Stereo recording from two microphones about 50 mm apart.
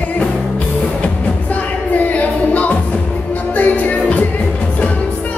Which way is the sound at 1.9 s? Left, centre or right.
Left.